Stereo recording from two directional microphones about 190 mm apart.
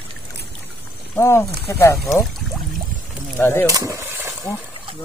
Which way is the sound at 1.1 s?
15° left (ahead or behind).